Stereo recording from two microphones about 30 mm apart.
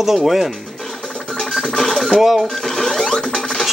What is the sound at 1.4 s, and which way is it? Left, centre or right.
Music, centre.